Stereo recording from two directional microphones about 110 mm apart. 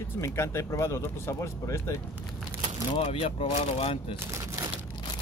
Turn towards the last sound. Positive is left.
turn(degrees=60)  # may be behind; listen again after turning